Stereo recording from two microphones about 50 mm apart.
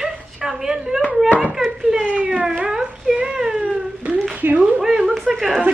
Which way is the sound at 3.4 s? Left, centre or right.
Centre.